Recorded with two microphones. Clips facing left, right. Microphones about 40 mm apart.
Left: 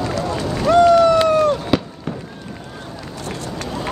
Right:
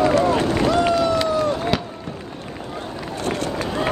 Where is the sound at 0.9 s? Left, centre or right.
Left.